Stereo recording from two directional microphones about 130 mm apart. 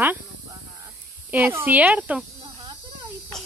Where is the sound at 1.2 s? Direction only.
15° right (ahead or behind).